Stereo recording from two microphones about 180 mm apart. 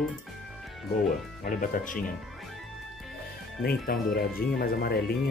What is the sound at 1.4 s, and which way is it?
Speech, 50° left (ahead or behind).